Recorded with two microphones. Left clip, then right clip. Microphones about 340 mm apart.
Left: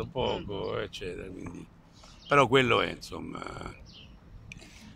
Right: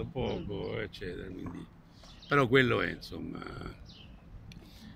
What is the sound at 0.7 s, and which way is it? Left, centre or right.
Speech, centre.